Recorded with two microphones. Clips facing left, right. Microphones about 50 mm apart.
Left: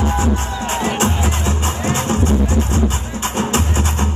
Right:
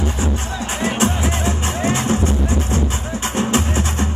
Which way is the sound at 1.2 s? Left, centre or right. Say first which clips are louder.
Even; right.